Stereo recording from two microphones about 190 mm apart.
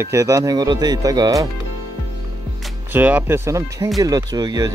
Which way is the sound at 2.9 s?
10° right (ahead or behind).